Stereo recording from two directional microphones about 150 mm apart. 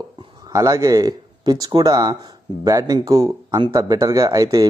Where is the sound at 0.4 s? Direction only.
20° right (ahead or behind).